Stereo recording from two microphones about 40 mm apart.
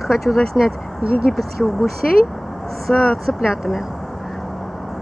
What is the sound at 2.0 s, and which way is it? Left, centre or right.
Speech, centre.